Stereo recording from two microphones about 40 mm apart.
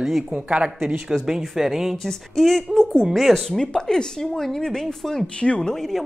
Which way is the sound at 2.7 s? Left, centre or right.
Centre.